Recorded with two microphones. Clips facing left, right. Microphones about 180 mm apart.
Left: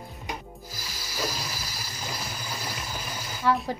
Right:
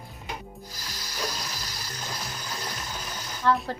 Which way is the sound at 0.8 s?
5° left (ahead or behind).